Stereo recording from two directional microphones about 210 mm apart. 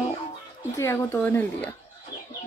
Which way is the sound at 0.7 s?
15° left (ahead or behind).